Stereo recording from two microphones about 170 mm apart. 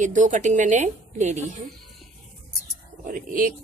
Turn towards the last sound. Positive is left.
turn(degrees=-55)  # may be behind; listen again after turning